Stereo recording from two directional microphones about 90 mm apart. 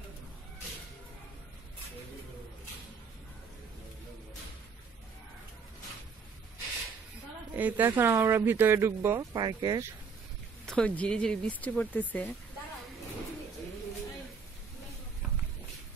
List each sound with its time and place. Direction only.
7.5 s speech: 20° right (ahead or behind)
9.3 s speech: 50° right (ahead or behind)
10.6 s speech: 10° left (ahead or behind)